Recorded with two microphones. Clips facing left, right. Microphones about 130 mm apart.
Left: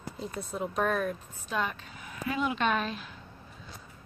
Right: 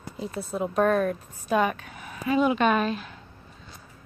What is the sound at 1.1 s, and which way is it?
A woman's voice, 55° right (ahead or behind).